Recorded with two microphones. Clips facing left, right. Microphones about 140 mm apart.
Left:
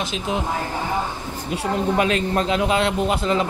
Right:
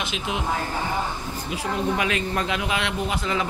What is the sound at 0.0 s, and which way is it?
Speech, 40° left (ahead or behind).